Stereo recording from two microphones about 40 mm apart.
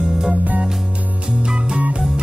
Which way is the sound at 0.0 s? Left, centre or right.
Right.